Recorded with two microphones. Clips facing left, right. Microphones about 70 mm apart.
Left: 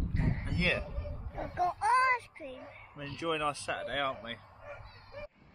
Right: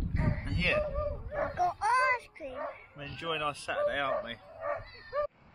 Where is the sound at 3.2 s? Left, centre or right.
Centre.